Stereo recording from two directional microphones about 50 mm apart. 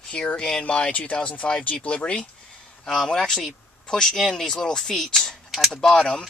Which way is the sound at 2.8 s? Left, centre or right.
Centre.